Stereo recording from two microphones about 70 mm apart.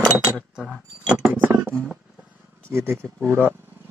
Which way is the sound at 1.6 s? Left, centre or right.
Right.